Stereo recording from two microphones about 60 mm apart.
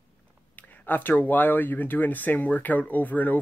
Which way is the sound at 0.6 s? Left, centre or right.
Left.